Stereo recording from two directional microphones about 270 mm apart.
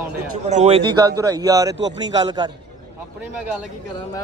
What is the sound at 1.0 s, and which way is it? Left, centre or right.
A man's voice, centre.